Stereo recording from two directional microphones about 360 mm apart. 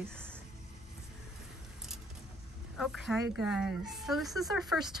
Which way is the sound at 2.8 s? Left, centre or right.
Centre.